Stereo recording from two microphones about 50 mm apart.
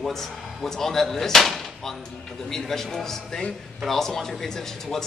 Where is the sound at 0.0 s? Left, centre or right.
Centre.